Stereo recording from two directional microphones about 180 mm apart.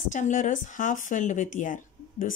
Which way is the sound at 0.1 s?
45° left (ahead or behind).